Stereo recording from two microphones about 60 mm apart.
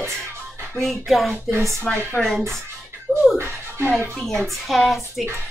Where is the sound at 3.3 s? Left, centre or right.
Right.